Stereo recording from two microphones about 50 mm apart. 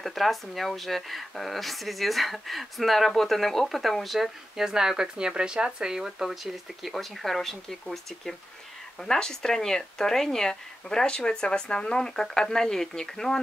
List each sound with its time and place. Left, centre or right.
0.0 s speech: centre